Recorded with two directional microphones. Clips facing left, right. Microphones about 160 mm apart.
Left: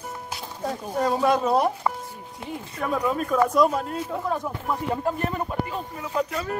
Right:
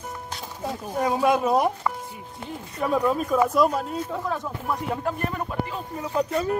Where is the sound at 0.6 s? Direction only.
5° right (ahead or behind).